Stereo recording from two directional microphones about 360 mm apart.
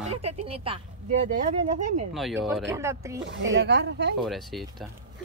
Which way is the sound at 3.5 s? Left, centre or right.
Right.